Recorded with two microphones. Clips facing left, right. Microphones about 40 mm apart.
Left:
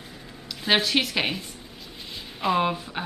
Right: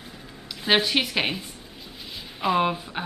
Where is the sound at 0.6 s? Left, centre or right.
Centre.